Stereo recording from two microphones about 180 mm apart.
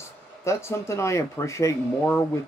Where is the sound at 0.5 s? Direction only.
15° left (ahead or behind).